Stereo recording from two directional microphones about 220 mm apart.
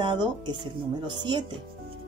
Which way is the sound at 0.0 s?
20° right (ahead or behind).